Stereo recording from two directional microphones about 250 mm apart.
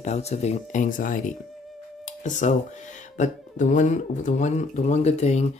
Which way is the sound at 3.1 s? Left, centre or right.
Left.